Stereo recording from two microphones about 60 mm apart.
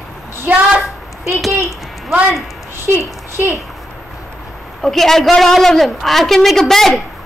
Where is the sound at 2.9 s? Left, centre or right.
Right.